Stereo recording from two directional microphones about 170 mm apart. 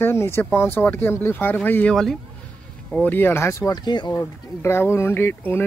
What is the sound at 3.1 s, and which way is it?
Speech, 15° left (ahead or behind).